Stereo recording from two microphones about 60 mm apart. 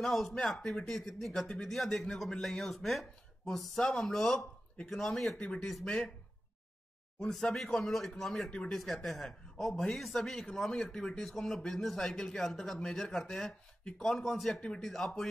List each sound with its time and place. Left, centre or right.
0.0 s speech: centre
7.2 s speech: centre
8.5 s speech: centre
8.7 s speech: centre